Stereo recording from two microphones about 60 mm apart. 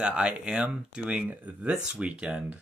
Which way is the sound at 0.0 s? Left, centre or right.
Centre.